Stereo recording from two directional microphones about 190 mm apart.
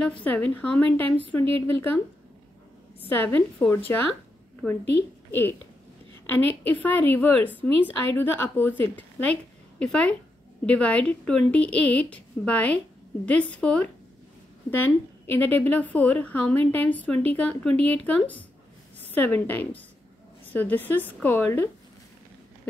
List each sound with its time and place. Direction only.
0.0 s a woman's voice: 5° left (ahead or behind)
3.0 s a woman's voice: 10° left (ahead or behind)
5.3 s a woman's voice: 10° left (ahead or behind)
6.6 s a woman's voice: 10° left (ahead or behind)